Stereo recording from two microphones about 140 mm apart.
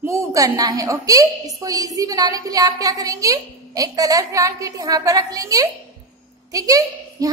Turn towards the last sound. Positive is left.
turn(degrees=-25)  # may be behind; listen again after turning